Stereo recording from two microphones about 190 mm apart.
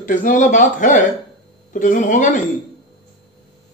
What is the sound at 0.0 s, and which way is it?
A man's voice, 45° left (ahead or behind).